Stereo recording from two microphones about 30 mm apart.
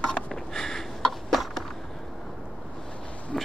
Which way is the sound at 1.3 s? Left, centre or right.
Centre.